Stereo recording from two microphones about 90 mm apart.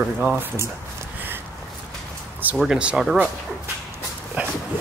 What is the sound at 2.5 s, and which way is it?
Speech, 5° right (ahead or behind).